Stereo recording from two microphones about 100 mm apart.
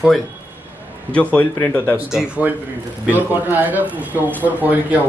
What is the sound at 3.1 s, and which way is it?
A man's voice, 20° right (ahead or behind).